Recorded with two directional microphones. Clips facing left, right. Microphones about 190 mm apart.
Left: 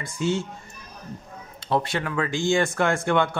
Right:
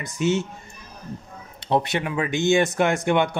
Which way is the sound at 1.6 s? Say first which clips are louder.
Right 2 dB; 20° right (ahead or behind).